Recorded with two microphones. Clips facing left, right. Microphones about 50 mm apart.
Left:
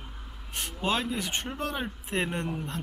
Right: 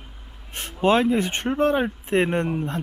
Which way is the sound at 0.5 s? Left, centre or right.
Right.